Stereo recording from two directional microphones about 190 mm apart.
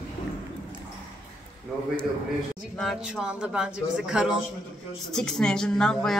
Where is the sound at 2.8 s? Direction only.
Centre (ahead or behind).